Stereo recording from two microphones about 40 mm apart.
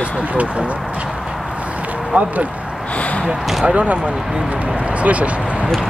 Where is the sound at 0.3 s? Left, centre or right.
Right.